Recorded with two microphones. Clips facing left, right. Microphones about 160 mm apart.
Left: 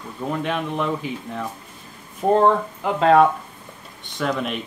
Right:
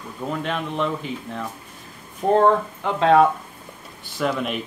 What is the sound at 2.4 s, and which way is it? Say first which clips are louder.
Speech: even; centre (ahead or behind).